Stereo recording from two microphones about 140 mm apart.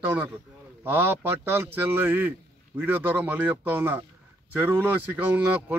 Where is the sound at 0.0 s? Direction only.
15° right (ahead or behind).